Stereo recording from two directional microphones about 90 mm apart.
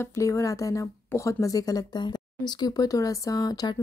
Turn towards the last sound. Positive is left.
turn(degrees=45)  # may be behind; listen again after turning